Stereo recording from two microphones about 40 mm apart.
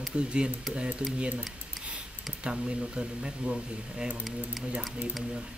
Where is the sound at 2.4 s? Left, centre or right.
Right.